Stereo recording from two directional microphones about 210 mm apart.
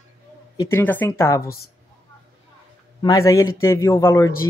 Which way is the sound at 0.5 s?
10° left (ahead or behind).